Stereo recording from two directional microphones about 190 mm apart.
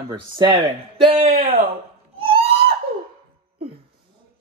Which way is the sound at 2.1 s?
30° right (ahead or behind).